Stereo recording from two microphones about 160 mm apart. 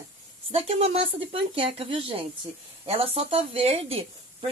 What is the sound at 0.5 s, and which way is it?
Speech, 40° right (ahead or behind).